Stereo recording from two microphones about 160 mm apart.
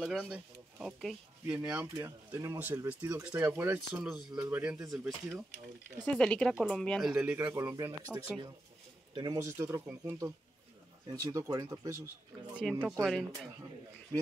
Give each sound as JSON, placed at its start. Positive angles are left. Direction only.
{"t": 0.0, "sound": "speech", "side_deg": -5}
{"t": 7.7, "sound": "speech", "side_deg": -25}
{"t": 12.5, "sound": "speech", "side_deg": -5}